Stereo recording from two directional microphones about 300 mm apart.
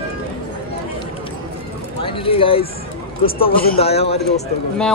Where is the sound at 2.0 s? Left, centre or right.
Centre.